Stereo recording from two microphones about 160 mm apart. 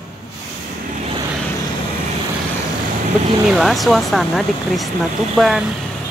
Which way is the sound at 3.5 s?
Centre (ahead or behind).